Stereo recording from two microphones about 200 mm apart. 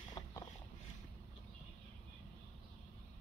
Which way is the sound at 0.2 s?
20° left (ahead or behind).